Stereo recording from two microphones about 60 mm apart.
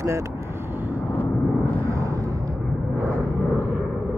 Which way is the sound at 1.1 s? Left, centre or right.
Left.